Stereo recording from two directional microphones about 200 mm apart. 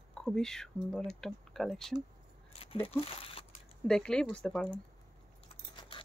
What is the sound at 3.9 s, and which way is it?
Speech, 5° left (ahead or behind).